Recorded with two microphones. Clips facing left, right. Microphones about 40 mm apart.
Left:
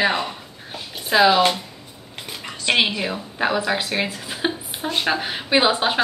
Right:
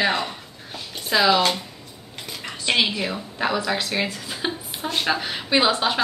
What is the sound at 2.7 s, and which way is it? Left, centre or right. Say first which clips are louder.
Speech: left 2 dB; left.